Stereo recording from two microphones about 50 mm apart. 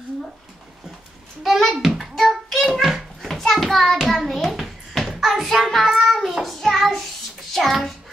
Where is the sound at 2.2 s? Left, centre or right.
Centre.